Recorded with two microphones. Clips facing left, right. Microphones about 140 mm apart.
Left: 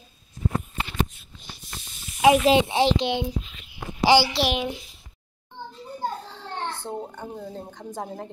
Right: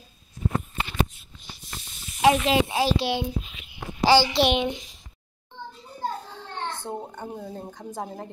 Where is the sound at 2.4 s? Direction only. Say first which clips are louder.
Left 3 dB; 25° left (ahead or behind).